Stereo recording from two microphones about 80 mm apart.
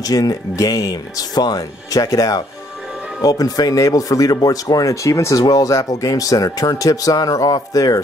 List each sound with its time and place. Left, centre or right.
0.0 s speech: left